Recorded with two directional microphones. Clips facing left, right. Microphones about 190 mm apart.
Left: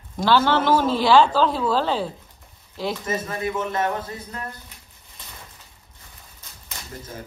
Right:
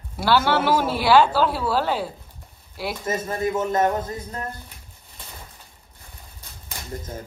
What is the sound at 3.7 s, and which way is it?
Speech, 45° right (ahead or behind).